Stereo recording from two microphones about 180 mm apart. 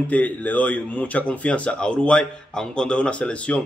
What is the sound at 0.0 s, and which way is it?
Speech, 10° left (ahead or behind).